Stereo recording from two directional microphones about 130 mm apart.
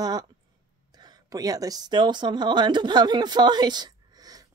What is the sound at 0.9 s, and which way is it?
Speech, 30° right (ahead or behind).